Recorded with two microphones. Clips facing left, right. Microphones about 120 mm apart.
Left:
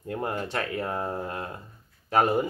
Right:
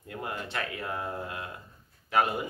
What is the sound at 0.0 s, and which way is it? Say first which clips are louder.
Speech: left 6 dB; 35° left (ahead or behind).